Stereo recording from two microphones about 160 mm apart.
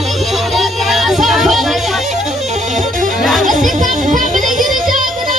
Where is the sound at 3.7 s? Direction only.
50° right (ahead or behind).